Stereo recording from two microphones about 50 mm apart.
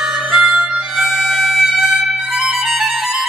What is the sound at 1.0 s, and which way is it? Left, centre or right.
Music, centre.